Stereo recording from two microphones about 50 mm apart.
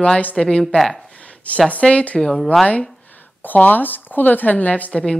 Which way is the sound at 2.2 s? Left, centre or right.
Centre.